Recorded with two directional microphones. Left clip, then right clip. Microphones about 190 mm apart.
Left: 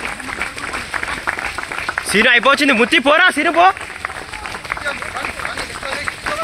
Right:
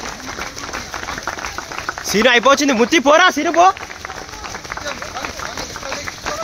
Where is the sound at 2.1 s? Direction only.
10° right (ahead or behind).